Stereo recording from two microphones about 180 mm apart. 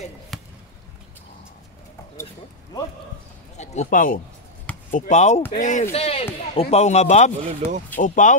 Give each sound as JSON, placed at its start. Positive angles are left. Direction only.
{"t": 0.3, "sound": "basketball bounce", "side_deg": 0}
{"t": 3.5, "sound": "speech", "side_deg": 40}
{"t": 7.4, "sound": "speech", "side_deg": -40}
{"t": 8.0, "sound": "speech", "side_deg": 45}